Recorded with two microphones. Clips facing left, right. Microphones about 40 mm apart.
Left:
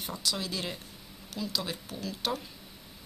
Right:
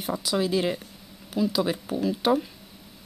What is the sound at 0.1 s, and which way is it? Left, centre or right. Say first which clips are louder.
A woman's voice: right 10 dB; centre.